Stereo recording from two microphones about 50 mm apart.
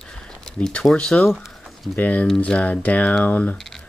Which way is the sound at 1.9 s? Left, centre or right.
Left.